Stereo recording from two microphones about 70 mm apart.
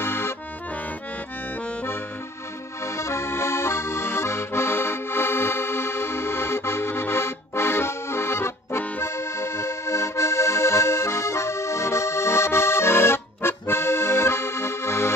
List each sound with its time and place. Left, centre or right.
0.0 s accordion: left
2.8 s accordion: left